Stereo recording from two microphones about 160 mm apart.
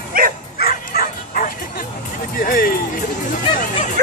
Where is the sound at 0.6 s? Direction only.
75° left (ahead or behind).